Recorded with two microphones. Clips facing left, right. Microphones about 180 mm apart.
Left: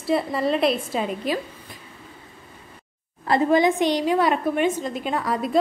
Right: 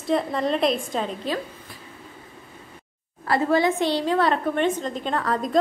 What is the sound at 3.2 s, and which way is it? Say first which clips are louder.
A woman's voice: left 2 dB; 20° left (ahead or behind).